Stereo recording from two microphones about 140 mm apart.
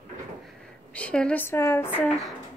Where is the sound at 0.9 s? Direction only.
10° left (ahead or behind).